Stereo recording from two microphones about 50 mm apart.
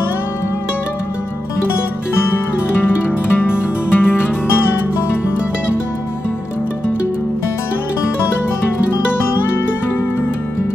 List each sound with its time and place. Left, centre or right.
3.3 s music: left